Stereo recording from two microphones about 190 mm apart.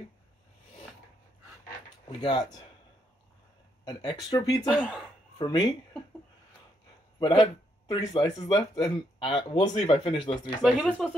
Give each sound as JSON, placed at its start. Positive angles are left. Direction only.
{"t": 2.0, "sound": "speech", "side_deg": 25}
{"t": 3.8, "sound": "speech", "side_deg": 20}
{"t": 4.6, "sound": "speech", "side_deg": -5}
{"t": 5.4, "sound": "speech", "side_deg": 25}
{"t": 7.2, "sound": "speech", "side_deg": 25}
{"t": 10.6, "sound": "speech", "side_deg": 0}